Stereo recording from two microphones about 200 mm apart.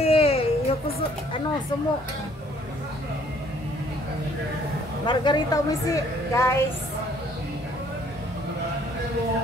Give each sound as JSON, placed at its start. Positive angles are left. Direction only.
{"t": 0.0, "sound": "music", "side_deg": 30}
{"t": 5.0, "sound": "a woman's voice", "side_deg": 20}